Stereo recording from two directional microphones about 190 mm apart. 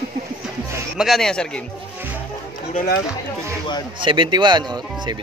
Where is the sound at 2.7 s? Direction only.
55° left (ahead or behind).